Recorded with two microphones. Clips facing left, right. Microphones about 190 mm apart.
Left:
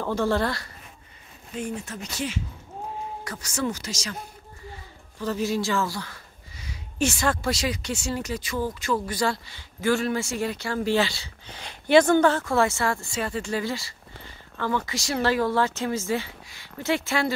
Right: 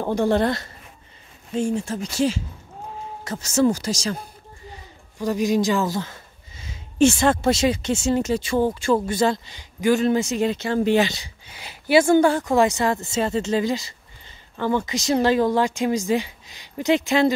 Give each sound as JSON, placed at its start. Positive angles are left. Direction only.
{"t": 0.0, "sound": "speech", "side_deg": -20}
{"t": 5.2, "sound": "speech", "side_deg": -15}